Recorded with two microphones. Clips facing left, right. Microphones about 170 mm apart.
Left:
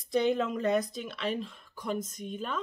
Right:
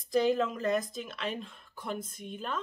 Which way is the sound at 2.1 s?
40° left (ahead or behind).